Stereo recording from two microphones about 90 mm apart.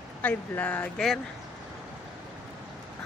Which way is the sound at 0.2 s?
20° left (ahead or behind).